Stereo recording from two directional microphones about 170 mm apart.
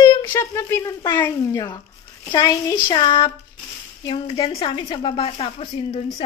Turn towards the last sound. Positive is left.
turn(degrees=30)  # may be behind; listen again after turning